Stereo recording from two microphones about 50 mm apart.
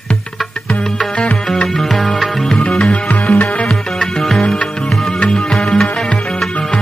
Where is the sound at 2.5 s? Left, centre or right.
Centre.